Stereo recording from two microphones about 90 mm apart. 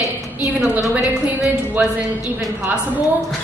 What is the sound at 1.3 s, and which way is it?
Speech, 15° right (ahead or behind).